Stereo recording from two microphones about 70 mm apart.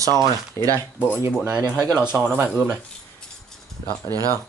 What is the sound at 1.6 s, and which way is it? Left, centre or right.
Speech, right.